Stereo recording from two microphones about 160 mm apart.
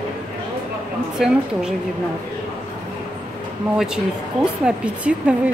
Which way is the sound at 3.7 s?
5° right (ahead or behind).